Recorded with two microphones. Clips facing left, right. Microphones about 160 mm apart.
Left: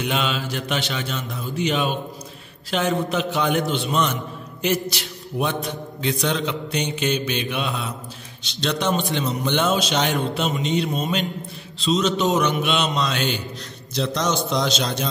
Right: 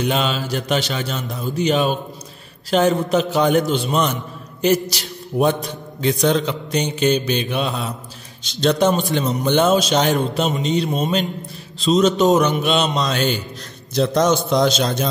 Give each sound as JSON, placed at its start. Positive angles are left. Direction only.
{"t": 0.0, "sound": "a man's voice", "side_deg": -35}